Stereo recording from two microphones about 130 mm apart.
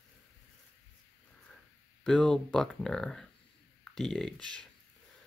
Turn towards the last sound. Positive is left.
turn(degrees=5)  # may be behind; listen again after turning